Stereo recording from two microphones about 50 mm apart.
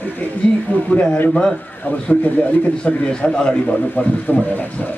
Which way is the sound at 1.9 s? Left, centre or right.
Left.